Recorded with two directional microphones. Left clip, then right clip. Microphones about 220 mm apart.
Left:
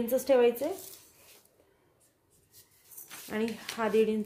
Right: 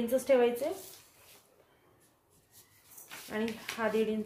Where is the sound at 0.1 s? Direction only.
35° left (ahead or behind).